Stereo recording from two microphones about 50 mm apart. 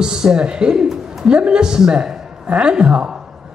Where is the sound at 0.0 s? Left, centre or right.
Centre.